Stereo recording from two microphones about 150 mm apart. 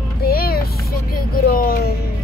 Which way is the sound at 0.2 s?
85° left.